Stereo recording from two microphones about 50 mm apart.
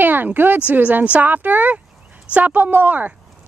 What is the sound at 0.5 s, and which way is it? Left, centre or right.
Speech, right.